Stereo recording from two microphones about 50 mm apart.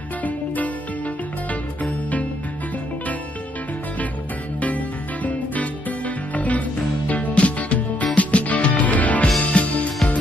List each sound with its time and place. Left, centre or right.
1.5 s music: left
4.6 s music: left